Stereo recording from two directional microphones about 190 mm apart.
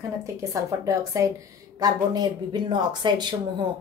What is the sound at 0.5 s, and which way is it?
A woman's voice, 15° right (ahead or behind).